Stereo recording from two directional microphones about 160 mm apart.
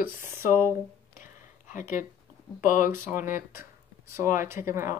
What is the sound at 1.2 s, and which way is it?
Whispering, 55° left (ahead or behind).